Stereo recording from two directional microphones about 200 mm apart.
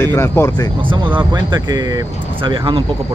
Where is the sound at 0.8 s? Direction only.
25° right (ahead or behind).